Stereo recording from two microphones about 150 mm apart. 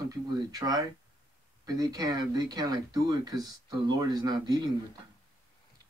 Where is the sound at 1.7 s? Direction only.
25° right (ahead or behind).